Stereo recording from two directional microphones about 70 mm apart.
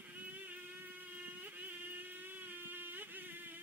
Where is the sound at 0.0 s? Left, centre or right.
Right.